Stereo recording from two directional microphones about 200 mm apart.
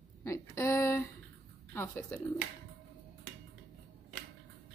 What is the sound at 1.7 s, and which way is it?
Speech, 10° left (ahead or behind).